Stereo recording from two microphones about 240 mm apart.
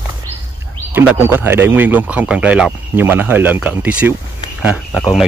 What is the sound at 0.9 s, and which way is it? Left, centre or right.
Speech, centre.